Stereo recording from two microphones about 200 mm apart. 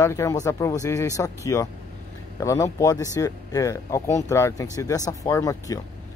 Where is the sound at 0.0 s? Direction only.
15° left (ahead or behind).